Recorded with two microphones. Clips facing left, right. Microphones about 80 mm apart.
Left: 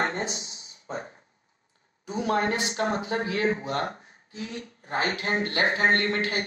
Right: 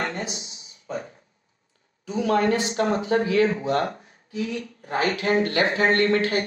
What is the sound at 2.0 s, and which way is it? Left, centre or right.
Speech, left.